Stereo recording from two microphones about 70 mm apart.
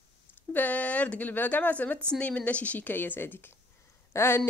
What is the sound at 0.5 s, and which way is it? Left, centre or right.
A woman's voice, left.